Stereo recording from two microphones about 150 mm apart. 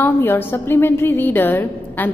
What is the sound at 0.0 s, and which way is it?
A woman's voice, 15° left (ahead or behind).